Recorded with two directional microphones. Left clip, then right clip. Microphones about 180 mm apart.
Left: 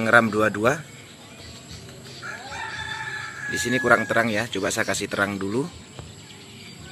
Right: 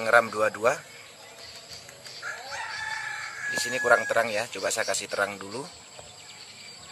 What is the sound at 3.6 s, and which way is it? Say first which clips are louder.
Speech: left 3 dB; centre (ahead or behind).